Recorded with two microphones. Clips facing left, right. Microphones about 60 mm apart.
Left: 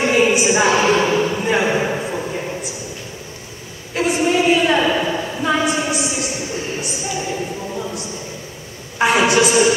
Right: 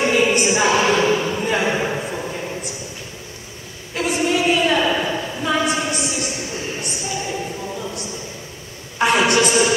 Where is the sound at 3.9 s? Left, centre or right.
Centre.